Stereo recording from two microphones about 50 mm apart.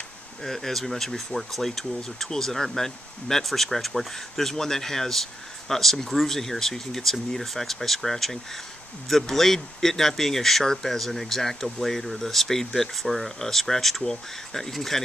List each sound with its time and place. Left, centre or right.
0.4 s speech: centre